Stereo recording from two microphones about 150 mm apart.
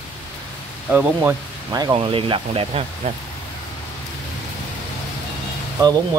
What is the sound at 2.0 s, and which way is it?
Speech, 35° right (ahead or behind).